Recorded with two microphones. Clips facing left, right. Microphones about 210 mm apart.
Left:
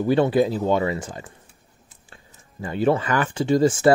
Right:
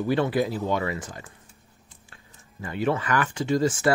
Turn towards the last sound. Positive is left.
turn(degrees=30)  # may be behind; listen again after turning